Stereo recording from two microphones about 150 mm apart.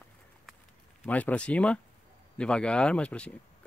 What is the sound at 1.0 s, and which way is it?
Speech, 10° left (ahead or behind).